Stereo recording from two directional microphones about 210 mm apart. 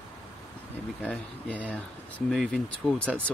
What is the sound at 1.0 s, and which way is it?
Speech, 5° left (ahead or behind).